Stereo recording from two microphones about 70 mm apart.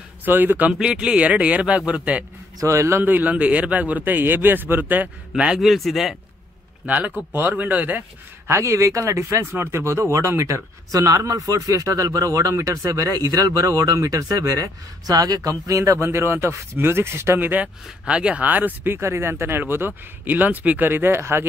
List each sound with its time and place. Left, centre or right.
0.2 s a man's voice: right
0.7 s a man's voice: centre
2.6 s speech: right
3.0 s a man's voice: right
5.3 s a man's voice: centre
7.3 s a man's voice: right
8.5 s speech: right
9.2 s speech: right
15.8 s speech: right
17.8 s a man's voice: centre
18.9 s a man's voice: right